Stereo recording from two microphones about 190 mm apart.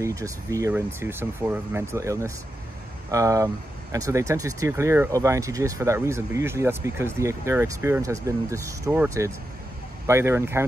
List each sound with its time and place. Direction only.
0.0 s speech: 15° right (ahead or behind)